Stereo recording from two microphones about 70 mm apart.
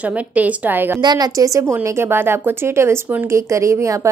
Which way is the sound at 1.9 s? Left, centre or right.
Right.